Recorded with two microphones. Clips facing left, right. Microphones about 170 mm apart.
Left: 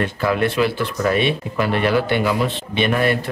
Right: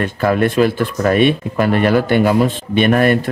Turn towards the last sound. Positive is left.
turn(degrees=-50)  # may be behind; listen again after turning